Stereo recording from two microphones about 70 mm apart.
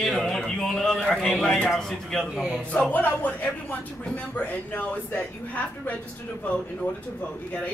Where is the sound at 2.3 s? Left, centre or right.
Centre.